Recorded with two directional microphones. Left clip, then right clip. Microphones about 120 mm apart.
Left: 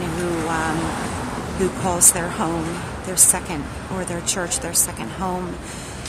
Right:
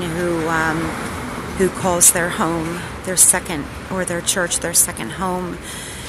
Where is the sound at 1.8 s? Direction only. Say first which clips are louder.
Right 3 dB; 25° right (ahead or behind).